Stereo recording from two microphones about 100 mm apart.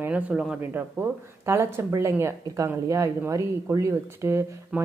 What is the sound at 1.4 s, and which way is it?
Speech, 25° right (ahead or behind).